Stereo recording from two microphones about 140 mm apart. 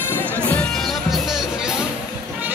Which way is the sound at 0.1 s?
10° left (ahead or behind).